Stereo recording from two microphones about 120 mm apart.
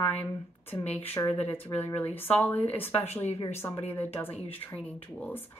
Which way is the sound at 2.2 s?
15° left (ahead or behind).